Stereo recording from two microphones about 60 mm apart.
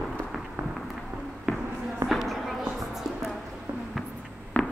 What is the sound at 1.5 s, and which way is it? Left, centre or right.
Basketball bounce, centre.